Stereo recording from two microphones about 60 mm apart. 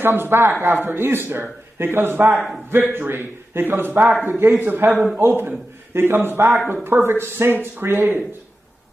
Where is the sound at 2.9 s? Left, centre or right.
Right.